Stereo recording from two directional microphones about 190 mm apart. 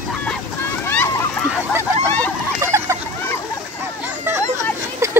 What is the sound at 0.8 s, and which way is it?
Splash, 10° left (ahead or behind).